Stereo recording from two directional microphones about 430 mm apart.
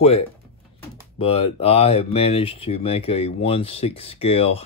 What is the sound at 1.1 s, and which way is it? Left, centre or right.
Speech, centre.